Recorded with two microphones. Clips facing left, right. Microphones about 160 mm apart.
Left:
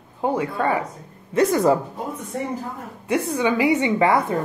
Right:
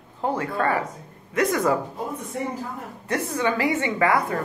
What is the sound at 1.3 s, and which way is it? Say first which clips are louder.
Speech: left 4 dB; 30° left (ahead or behind).